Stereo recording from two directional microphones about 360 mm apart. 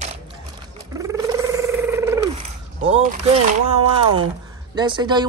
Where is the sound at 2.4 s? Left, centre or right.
Centre.